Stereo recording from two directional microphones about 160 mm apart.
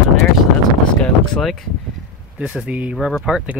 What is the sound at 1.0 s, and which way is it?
Speech, centre (ahead or behind).